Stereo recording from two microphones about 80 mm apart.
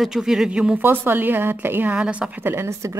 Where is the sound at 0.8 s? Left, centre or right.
Right.